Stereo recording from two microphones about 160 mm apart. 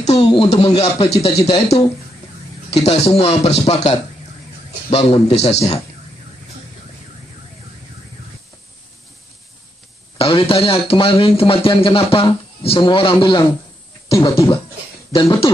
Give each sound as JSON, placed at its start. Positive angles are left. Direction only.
{"t": 0.0, "sound": "a man's voice", "side_deg": 40}
{"t": 10.1, "sound": "speech", "side_deg": 35}
{"t": 15.1, "sound": "speech", "side_deg": 35}